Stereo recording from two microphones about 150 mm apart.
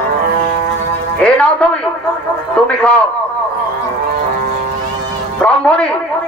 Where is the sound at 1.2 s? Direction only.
5° left (ahead or behind).